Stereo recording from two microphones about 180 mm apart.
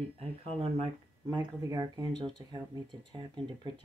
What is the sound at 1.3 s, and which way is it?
Speech, 20° right (ahead or behind).